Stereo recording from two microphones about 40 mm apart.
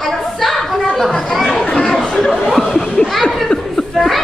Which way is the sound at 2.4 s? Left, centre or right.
Centre.